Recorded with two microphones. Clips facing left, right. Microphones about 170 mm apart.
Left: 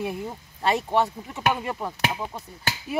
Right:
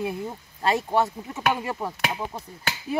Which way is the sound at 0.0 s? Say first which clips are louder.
Right 1 dB; centre (ahead or behind).